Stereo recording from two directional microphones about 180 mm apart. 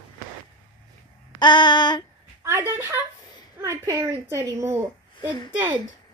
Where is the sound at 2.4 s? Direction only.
15° right (ahead or behind).